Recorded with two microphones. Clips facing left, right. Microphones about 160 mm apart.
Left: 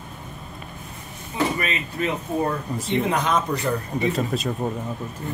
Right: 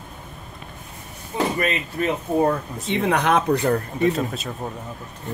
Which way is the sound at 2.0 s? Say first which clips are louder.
Right 2 dB; 45° right (ahead or behind).